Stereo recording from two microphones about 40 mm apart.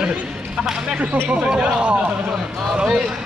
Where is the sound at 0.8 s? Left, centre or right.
Right.